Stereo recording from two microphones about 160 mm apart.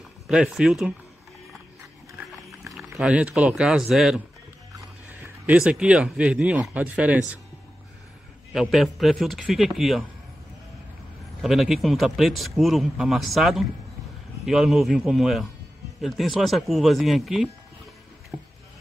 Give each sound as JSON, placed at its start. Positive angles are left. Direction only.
{"t": 0.3, "sound": "speech", "side_deg": -5}
{"t": 2.7, "sound": "speech", "side_deg": -5}
{"t": 8.5, "sound": "speech", "side_deg": 0}
{"t": 11.4, "sound": "speech", "side_deg": 0}
{"t": 18.3, "sound": "a sound", "side_deg": -35}